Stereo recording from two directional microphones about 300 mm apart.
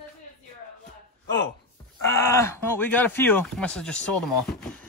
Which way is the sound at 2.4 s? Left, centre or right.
Centre.